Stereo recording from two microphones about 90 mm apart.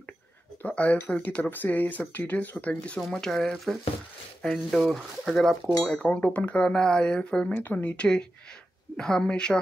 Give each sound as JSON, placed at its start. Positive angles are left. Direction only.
{"t": 0.6, "sound": "speech", "side_deg": 15}
{"t": 3.0, "sound": "speech", "side_deg": 5}